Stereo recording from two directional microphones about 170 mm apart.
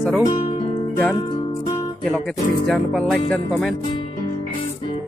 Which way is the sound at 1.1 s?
30° left (ahead or behind).